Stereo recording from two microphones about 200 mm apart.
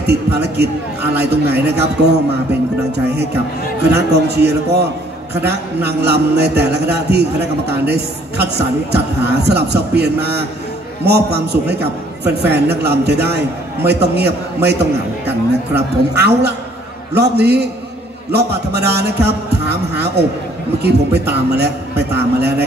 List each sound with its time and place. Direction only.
0.0 s a man's voice: 55° right (ahead or behind)
3.9 s a man's voice: 55° right (ahead or behind)